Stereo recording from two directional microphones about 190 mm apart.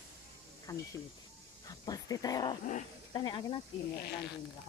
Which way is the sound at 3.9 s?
60° left (ahead or behind).